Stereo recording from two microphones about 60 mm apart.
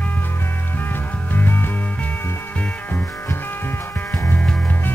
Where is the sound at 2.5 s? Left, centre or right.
Left.